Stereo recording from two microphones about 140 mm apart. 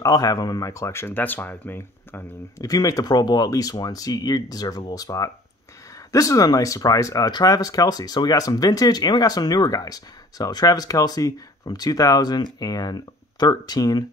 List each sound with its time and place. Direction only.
0.0 s speech: 25° left (ahead or behind)